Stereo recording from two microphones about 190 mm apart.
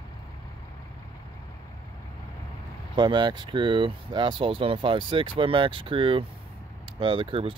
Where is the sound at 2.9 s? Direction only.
25° right (ahead or behind).